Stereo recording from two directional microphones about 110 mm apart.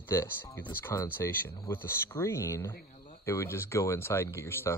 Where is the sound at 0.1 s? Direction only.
20° left (ahead or behind).